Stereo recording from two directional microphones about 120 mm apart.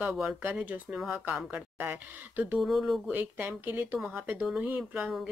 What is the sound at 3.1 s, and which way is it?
Speech, 15° right (ahead or behind).